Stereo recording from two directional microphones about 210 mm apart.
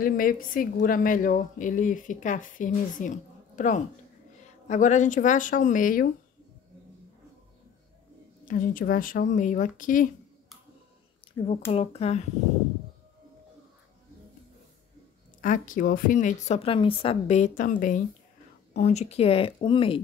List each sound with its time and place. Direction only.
0.0 s a woman's voice: 40° left (ahead or behind)
8.5 s a woman's voice: 40° left (ahead or behind)
11.7 s a woman's voice: 30° left (ahead or behind)
15.4 s a woman's voice: 40° left (ahead or behind)